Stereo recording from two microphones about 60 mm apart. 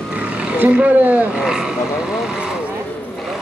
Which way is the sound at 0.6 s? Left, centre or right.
Right.